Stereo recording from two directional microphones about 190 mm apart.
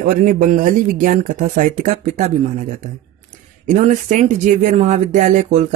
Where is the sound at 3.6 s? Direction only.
40° right (ahead or behind).